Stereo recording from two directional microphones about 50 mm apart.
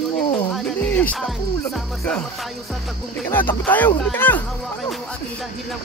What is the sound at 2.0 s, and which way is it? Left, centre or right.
Speech, left.